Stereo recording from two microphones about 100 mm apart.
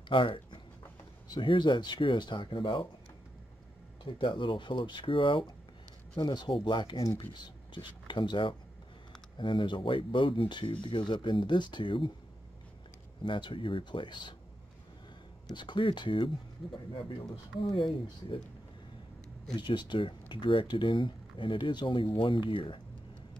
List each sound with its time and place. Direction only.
0.1 s speech: 55° left (ahead or behind)
4.0 s speech: 55° left (ahead or behind)
13.2 s speech: 55° left (ahead or behind)
15.5 s speech: 50° left (ahead or behind)
19.5 s speech: 50° left (ahead or behind)